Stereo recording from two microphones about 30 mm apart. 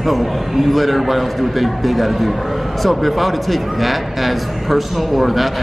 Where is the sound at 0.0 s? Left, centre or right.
Centre.